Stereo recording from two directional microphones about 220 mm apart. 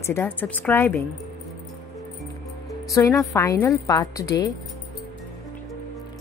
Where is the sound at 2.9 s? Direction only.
15° left (ahead or behind).